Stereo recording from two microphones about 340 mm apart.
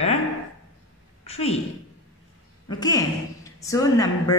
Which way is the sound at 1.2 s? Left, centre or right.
Centre.